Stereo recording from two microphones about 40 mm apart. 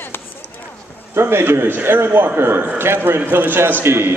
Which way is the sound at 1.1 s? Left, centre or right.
Right.